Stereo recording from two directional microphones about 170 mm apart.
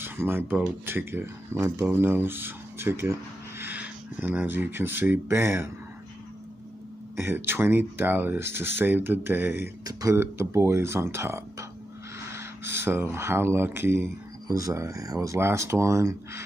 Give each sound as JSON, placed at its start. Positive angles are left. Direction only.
{"t": 0.0, "sound": "speech", "side_deg": -10}
{"t": 7.2, "sound": "speech", "side_deg": -15}